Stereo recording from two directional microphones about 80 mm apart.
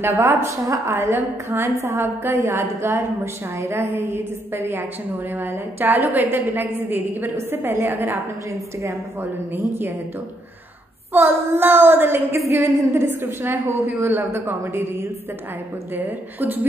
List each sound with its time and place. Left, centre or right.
0.0 s a woman's voice: right
2.3 s child singing: right
3.5 s a woman's voice: right
5.3 s child singing: right
11.1 s child singing: right